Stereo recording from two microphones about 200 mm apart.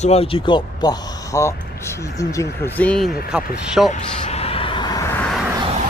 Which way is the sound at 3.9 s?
35° left (ahead or behind).